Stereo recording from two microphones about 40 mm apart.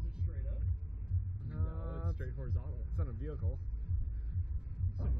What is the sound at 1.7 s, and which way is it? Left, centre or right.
Speech, right.